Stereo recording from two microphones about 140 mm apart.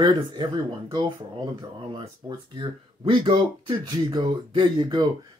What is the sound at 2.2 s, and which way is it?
Speech, 35° right (ahead or behind).